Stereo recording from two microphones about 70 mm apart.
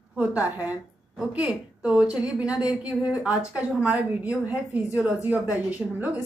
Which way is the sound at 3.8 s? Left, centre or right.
Centre.